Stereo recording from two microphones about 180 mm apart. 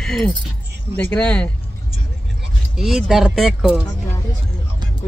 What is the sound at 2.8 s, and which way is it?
Speech, centre (ahead or behind).